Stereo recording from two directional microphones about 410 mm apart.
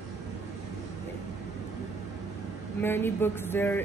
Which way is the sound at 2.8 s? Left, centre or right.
Centre.